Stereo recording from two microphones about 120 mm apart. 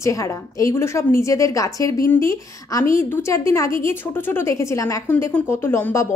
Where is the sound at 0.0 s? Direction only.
25° left (ahead or behind).